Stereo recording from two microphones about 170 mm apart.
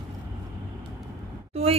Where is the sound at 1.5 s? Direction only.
35° right (ahead or behind).